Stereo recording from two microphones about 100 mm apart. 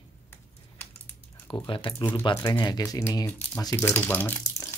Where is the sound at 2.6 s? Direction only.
40° left (ahead or behind).